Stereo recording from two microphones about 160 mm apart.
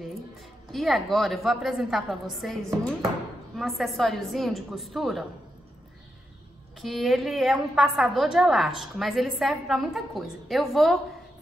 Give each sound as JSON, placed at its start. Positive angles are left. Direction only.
{"t": 0.7, "sound": "a woman's voice", "side_deg": 0}
{"t": 6.8, "sound": "a woman's voice", "side_deg": 0}